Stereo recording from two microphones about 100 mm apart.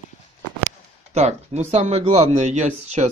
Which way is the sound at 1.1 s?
90° right.